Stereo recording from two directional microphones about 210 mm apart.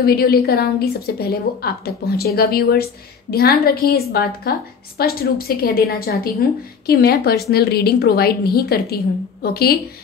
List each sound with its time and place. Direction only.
0.0 s a woman's voice: 45° left (ahead or behind)